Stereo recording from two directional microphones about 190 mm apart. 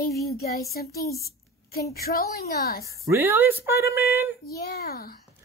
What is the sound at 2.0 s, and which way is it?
Speech, 55° left (ahead or behind).